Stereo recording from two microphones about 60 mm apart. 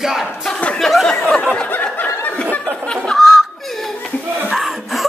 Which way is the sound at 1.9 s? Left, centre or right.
Left.